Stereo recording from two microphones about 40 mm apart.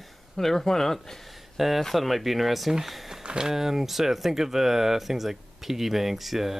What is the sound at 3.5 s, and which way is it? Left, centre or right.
Speech, centre.